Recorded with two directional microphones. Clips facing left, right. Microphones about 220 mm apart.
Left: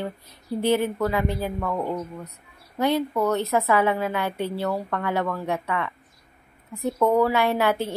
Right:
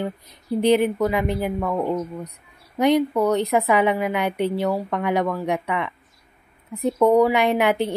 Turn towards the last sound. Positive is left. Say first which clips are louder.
# right 3 dB
turn(degrees=-15)  # may be behind; listen again after turning